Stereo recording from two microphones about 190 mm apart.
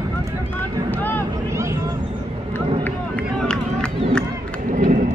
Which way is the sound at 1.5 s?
15° right (ahead or behind).